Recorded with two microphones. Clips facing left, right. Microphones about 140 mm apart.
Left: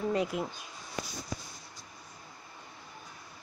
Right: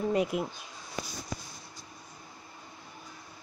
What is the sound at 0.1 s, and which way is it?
Speech, 15° right (ahead or behind).